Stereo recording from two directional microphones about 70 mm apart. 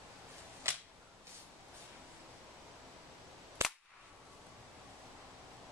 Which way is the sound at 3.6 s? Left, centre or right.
Right.